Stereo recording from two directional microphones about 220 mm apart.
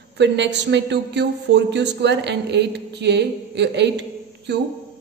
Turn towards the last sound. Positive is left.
turn(degrees=-50)  # may be behind; listen again after turning